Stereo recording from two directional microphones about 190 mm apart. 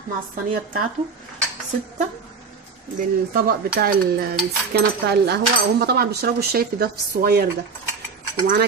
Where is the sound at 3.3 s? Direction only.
55° right (ahead or behind).